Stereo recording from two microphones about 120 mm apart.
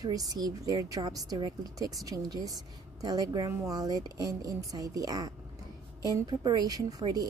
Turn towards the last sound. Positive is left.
turn(degrees=-35)  # may be behind; listen again after turning